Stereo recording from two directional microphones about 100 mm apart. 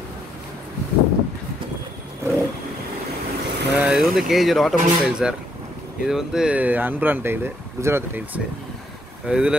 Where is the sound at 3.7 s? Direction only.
10° right (ahead or behind).